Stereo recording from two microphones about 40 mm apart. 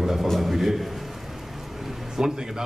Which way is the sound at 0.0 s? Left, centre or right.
Centre.